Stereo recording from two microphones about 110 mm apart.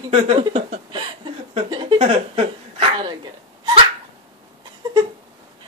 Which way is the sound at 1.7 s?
45° right (ahead or behind).